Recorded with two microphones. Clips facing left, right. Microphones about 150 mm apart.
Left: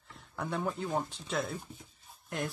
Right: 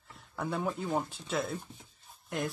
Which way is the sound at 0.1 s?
Centre (ahead or behind).